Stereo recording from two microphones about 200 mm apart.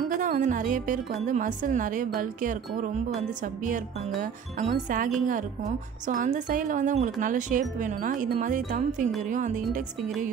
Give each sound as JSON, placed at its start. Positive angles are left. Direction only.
{"t": 0.1, "sound": "a woman's voice", "side_deg": -40}